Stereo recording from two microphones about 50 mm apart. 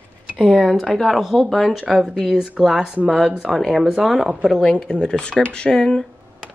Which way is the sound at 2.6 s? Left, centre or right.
Centre.